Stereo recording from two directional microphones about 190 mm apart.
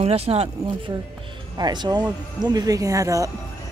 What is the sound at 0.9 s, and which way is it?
Speech, 20° right (ahead or behind).